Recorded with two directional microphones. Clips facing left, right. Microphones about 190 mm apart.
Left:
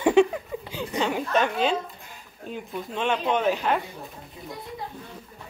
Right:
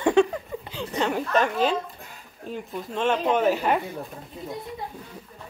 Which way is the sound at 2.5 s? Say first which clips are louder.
Right 1 dB; centre (ahead or behind).